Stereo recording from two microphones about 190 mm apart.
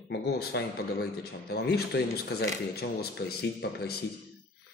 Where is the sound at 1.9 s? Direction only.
60° left (ahead or behind).